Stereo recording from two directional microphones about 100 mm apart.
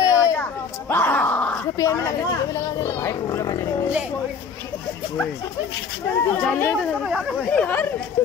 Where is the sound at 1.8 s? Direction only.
35° left (ahead or behind).